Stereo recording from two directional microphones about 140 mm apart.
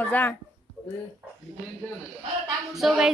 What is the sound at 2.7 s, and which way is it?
Speech, centre (ahead or behind).